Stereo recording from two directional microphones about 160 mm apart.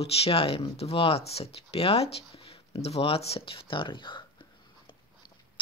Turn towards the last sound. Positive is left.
turn(degrees=30)  # may be behind; listen again after turning